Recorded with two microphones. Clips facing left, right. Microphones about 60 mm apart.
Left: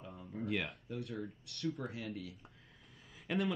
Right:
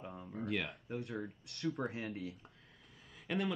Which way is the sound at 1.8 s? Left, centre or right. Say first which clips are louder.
Right 4 dB; right.